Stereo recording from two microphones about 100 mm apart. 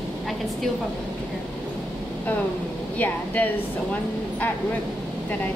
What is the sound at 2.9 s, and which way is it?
Speech, 15° left (ahead or behind).